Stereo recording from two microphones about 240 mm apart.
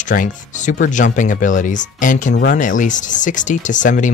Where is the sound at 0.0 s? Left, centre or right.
Left.